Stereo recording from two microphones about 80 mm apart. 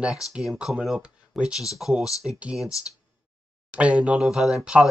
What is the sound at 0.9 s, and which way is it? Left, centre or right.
Speech, centre.